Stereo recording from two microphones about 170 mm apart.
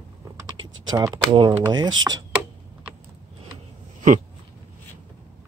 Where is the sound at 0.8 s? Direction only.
20° right (ahead or behind).